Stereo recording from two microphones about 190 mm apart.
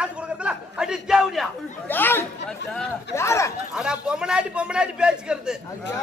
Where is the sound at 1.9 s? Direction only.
10° left (ahead or behind).